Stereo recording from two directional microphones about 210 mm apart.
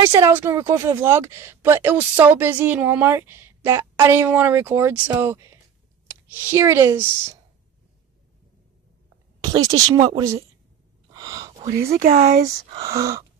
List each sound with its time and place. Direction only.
0.0 s a woman's voice: 10° right (ahead or behind)
9.4 s a sound: 20° right (ahead or behind)
9.7 s speech: 30° right (ahead or behind)
10.0 s a woman's voice: 15° right (ahead or behind)
11.1 s gasp: 15° right (ahead or behind)
11.9 s speech: 40° right (ahead or behind)
12.4 s a woman's voice: 15° right (ahead or behind)